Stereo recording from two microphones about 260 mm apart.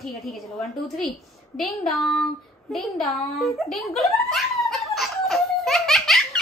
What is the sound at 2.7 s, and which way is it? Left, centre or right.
Giggle, centre.